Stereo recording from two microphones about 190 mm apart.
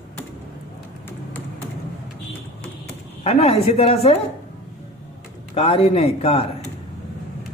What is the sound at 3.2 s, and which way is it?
Speech, 30° left (ahead or behind).